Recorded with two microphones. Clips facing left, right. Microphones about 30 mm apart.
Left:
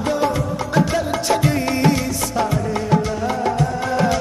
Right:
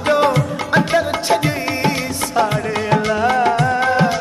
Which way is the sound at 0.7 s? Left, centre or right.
Right.